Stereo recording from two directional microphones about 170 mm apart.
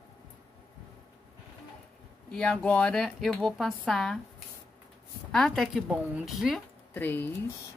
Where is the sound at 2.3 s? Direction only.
5° left (ahead or behind).